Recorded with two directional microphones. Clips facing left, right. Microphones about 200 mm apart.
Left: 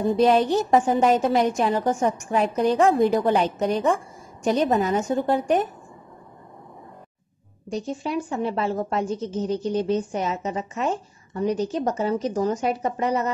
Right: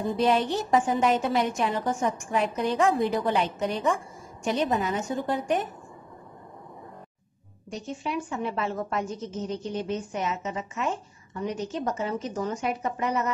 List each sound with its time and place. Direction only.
0.2 s a woman's voice: 40° left (ahead or behind)
7.7 s a woman's voice: 35° left (ahead or behind)